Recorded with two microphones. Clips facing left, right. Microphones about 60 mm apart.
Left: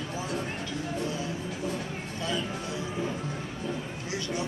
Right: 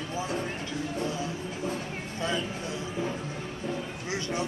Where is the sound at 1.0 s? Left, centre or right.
Right.